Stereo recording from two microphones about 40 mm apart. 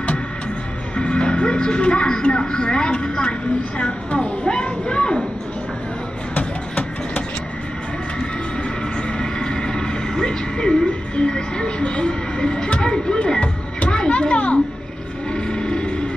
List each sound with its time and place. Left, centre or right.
0.9 s speech: left
6.3 s music: left
9.2 s vehicle: left
12.6 s children playing: left
15.3 s a sound: left